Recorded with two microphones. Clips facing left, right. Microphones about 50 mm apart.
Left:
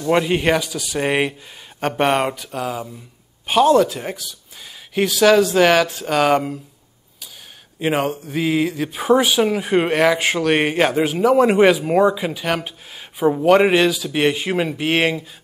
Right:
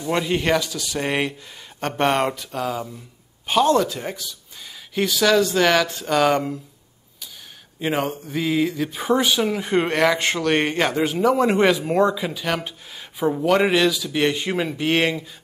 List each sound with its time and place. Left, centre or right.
0.1 s speech: centre
7.8 s speech: centre